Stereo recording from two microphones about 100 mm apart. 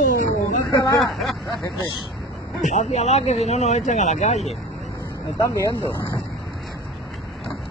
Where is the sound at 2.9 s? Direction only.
90° left.